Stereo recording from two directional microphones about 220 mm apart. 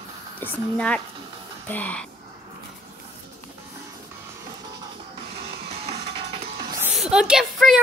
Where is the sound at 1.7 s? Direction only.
5° left (ahead or behind).